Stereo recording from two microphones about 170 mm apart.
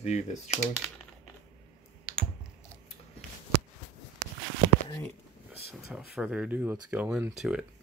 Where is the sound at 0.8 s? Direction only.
5° left (ahead or behind).